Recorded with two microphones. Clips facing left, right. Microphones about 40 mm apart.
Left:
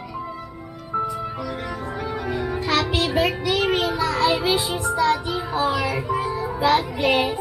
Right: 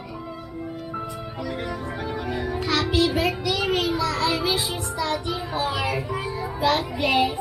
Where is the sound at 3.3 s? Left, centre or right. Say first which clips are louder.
Left 3 dB; centre.